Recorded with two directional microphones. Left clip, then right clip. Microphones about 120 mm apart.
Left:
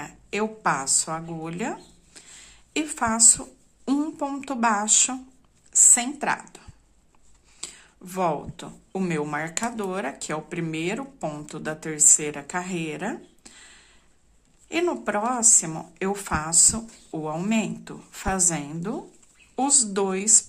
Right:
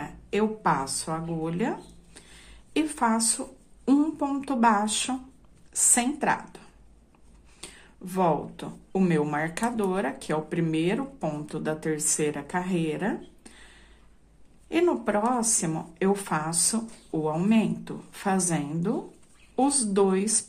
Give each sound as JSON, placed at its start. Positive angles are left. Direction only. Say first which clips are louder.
{"t": 0.0, "sound": "speech", "louder": "right 1 dB", "side_deg": 25}